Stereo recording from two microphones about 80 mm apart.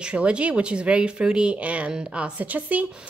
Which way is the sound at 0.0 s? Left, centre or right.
Centre.